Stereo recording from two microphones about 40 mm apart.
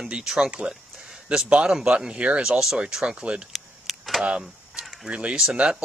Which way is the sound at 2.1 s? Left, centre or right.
Right.